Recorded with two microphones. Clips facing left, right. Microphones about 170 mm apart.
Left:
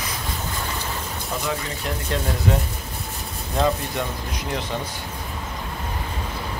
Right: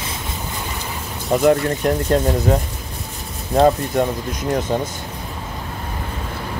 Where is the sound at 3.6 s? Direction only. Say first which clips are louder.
Right 8 dB; 45° right (ahead or behind).